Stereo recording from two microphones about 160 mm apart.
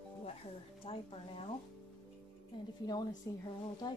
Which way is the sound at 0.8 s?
35° left (ahead or behind).